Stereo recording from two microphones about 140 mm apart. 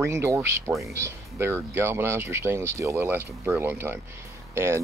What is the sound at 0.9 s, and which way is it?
Speech, 20° right (ahead or behind).